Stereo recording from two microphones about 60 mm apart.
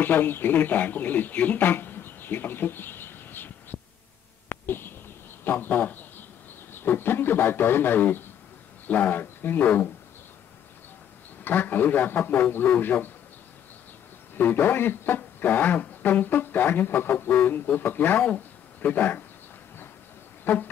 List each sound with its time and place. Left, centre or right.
0.0 s speech: left
4.5 s a sound: left
5.4 s a man's voice: left
11.4 s speech: left
14.3 s speech: left
20.4 s speech: left